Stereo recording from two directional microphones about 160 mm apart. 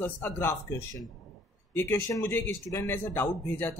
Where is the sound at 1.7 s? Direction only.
15° left (ahead or behind).